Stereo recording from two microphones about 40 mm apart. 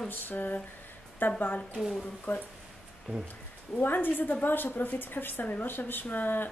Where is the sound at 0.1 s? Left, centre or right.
Left.